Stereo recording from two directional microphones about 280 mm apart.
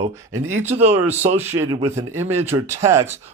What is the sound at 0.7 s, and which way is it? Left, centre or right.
Speech, right.